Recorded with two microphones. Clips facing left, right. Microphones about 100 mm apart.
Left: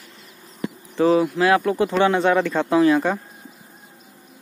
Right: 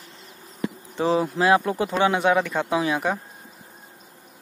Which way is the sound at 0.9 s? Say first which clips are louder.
Left 5 dB; 25° right (ahead or behind).